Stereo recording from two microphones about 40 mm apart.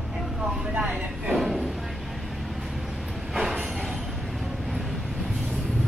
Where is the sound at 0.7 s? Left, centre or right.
Right.